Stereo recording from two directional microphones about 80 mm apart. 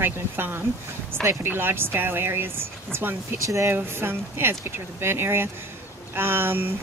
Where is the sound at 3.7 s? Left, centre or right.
Right.